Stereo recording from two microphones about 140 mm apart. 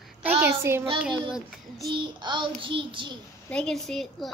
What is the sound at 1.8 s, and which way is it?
Child singing, 35° right (ahead or behind).